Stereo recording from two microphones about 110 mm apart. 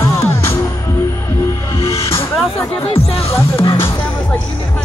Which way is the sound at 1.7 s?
25° left (ahead or behind).